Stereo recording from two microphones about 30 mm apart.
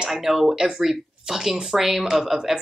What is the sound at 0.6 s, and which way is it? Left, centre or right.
Speech, right.